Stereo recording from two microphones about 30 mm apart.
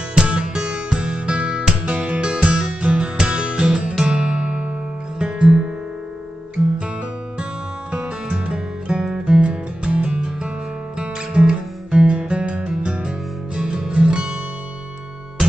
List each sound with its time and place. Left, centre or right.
0.1 s music: right
4.0 s guitar: right
5.2 s music: right
7.9 s music: right
13.6 s music: right